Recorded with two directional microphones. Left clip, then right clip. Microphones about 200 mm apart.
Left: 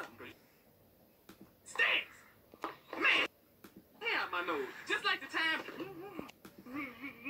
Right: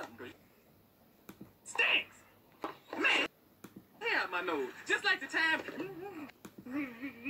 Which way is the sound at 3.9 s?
50° right (ahead or behind).